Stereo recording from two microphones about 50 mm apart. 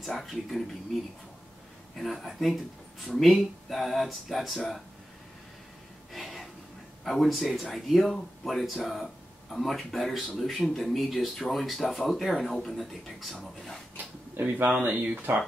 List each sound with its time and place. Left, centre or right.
0.0 s speech: centre
2.0 s speech: centre
6.1 s a sound: centre
7.1 s speech: centre
14.4 s speech: right